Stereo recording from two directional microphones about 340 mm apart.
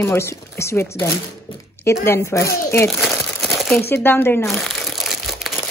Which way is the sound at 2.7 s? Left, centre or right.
Centre.